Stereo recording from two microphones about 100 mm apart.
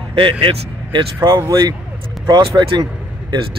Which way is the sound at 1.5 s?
40° right (ahead or behind).